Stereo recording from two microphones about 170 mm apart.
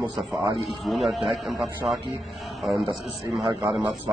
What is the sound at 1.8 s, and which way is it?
Speech, 20° right (ahead or behind).